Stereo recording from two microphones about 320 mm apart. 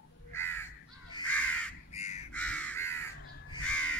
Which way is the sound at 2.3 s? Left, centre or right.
Centre.